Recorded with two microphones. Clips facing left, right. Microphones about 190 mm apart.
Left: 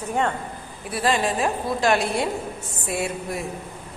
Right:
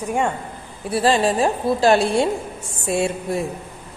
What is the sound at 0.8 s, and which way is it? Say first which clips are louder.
A woman's voice: right 5 dB; 30° right (ahead or behind).